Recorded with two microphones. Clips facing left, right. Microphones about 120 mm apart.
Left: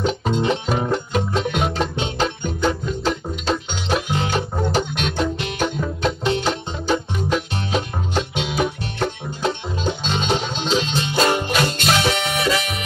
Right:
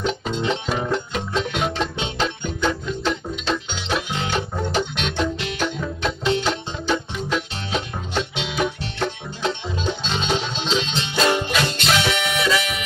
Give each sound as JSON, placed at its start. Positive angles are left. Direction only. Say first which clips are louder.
{"t": 0.2, "sound": "music", "louder": "left 3 dB", "side_deg": 45}